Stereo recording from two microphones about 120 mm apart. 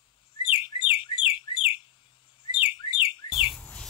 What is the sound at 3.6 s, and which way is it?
Chicken, 10° left (ahead or behind).